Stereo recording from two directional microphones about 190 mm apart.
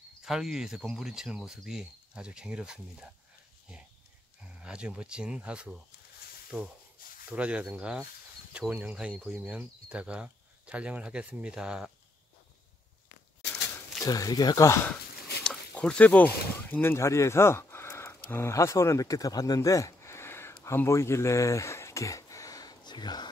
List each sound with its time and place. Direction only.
0.2 s speech: centre (ahead or behind)
4.6 s speech: 5° right (ahead or behind)
14.0 s speech: 20° left (ahead or behind)
15.4 s speech: 5° left (ahead or behind); by 23.2 s 20° left (ahead or behind)